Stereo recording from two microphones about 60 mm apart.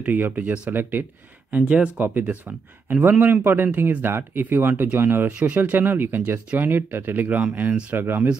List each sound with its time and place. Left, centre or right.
0.0 s speech: right
1.5 s speech: centre
2.0 s speech: right
5.3 s speech: right
5.6 s speech: right